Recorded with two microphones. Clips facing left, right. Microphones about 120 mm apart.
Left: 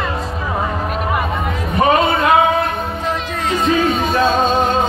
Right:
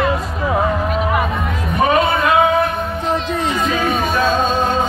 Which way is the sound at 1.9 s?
25° left (ahead or behind).